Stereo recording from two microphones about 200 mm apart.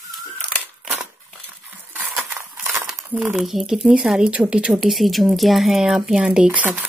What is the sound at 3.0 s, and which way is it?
Speech, 5° right (ahead or behind).